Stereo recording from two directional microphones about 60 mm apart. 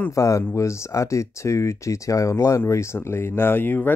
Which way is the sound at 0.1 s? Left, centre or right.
Left.